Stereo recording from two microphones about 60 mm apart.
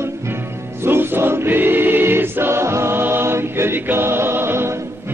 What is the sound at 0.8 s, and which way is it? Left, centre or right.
Choir, right.